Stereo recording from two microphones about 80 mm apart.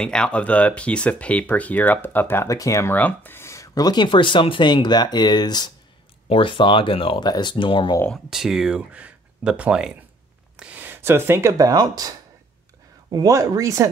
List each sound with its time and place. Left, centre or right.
0.0 s speech: centre; by 2.4 s left
2.4 s speech: left
2.9 s speech: left
6.3 s speech: left
8.3 s speech: centre; by 11.5 s right
11.5 s speech: right
13.3 s speech: right